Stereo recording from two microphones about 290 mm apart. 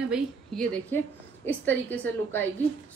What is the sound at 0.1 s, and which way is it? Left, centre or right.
A woman's voice, centre.